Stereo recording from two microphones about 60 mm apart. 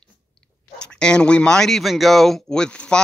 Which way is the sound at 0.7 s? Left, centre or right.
Centre.